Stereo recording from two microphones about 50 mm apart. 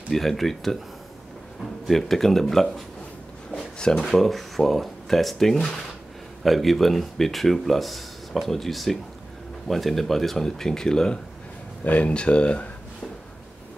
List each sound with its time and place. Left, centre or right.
0.1 s speech: centre
1.9 s speech: centre
3.5 s a sound: centre
4.1 s speech: centre
11.8 s speech: left